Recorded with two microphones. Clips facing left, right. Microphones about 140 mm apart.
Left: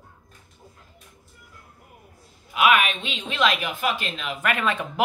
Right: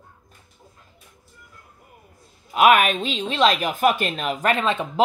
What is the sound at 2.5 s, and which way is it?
Speech, 45° right (ahead or behind).